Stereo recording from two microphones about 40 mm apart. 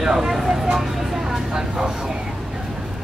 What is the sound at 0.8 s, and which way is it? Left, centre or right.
Vehicle, centre.